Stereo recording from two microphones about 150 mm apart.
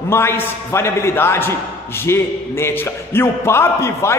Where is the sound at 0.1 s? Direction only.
15° left (ahead or behind).